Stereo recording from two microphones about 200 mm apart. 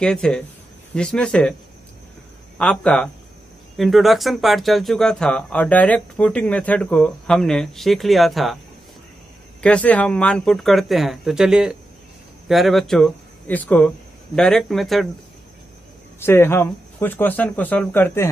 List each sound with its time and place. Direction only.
0.0 s speech: 5° left (ahead or behind)
2.5 s speech: 5° left (ahead or behind)
9.6 s speech: 5° left (ahead or behind)
16.2 s speech: 10° left (ahead or behind)